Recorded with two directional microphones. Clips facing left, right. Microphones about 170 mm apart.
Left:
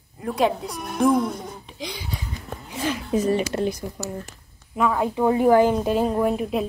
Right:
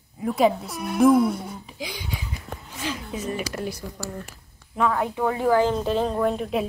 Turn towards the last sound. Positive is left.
turn(degrees=5)  # may be behind; listen again after turning